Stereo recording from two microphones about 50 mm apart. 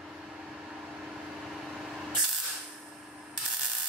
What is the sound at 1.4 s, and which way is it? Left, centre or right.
Spray, centre.